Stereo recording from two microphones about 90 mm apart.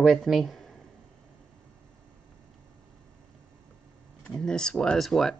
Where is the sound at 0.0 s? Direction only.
Centre (ahead or behind).